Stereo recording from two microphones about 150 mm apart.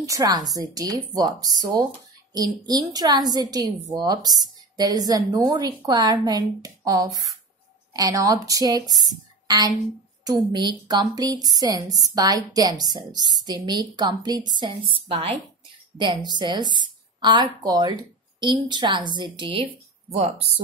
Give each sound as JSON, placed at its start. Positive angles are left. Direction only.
{"t": 0.0, "sound": "a woman's voice", "side_deg": -25}
{"t": 10.2, "sound": "a woman's voice", "side_deg": -30}